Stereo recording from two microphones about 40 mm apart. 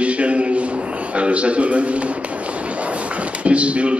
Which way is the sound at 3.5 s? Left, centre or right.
Right.